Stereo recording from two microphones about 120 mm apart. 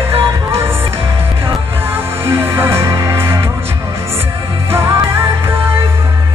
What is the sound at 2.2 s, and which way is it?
Music, 20° right (ahead or behind).